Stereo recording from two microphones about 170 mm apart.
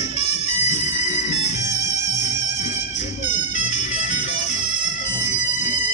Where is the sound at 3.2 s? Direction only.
45° left (ahead or behind).